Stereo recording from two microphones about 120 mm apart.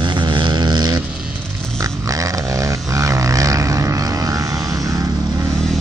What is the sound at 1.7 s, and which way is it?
Dog, 30° right (ahead or behind).